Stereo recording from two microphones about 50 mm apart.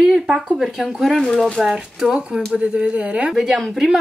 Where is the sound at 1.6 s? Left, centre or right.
Centre.